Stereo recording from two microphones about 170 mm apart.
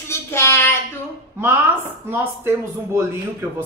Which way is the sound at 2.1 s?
10° right (ahead or behind).